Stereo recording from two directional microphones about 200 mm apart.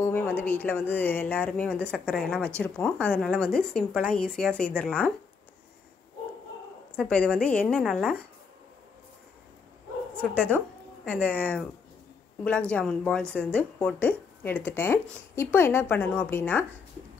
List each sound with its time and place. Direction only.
0.0 s speech: 10° left (ahead or behind)
7.0 s a woman's voice: 5° left (ahead or behind)
10.2 s speech: 5° left (ahead or behind)